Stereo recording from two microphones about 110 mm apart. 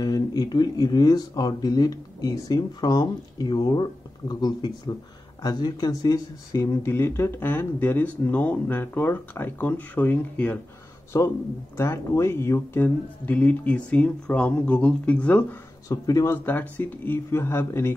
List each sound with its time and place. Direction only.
0.0 s speech: 35° left (ahead or behind); by 15.4 s 15° left (ahead or behind)
15.9 s speech: 35° left (ahead or behind)
16.3 s speech: 15° left (ahead or behind)